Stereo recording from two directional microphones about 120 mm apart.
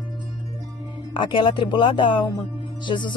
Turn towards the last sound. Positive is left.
turn(degrees=40)  # may be behind; listen again after turning